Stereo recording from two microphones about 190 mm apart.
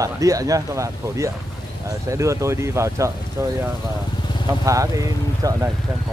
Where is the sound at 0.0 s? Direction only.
15° right (ahead or behind).